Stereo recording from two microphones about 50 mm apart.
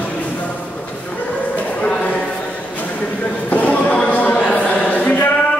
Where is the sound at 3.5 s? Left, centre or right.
Left.